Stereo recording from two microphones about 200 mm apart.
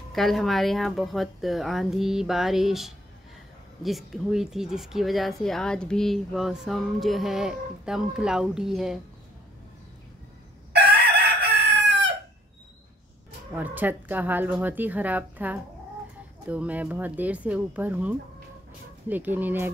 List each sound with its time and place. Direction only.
0.1 s speech: centre (ahead or behind)
10.7 s chicken: 55° right (ahead or behind)
13.6 s speech: 10° right (ahead or behind)